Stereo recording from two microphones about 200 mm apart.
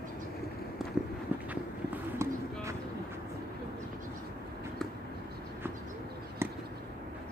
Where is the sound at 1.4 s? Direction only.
10° right (ahead or behind).